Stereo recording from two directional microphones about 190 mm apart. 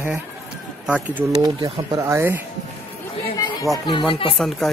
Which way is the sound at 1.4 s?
20° right (ahead or behind).